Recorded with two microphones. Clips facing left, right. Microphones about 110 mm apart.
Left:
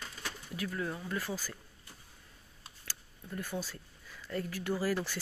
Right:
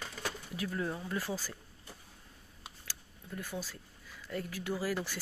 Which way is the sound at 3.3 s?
5° right (ahead or behind).